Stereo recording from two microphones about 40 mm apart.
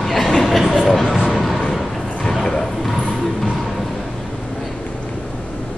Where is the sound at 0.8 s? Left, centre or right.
Centre.